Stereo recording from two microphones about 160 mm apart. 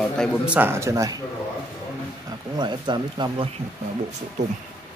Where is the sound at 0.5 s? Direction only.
15° right (ahead or behind).